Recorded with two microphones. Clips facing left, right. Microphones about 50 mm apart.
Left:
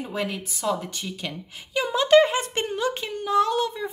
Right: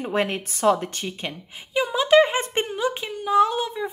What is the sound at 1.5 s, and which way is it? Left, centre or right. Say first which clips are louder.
Speech: right 2 dB; centre.